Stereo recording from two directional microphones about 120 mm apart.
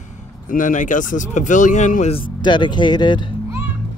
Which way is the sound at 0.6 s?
90° left.